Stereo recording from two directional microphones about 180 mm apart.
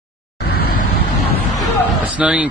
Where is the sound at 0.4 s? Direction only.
60° left (ahead or behind).